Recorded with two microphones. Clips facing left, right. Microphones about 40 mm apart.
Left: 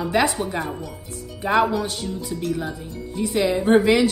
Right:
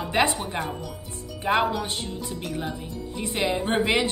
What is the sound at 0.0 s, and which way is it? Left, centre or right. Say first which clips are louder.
A woman's voice: left 3 dB; right.